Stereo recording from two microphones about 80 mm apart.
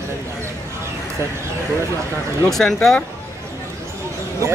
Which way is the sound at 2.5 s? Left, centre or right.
Centre.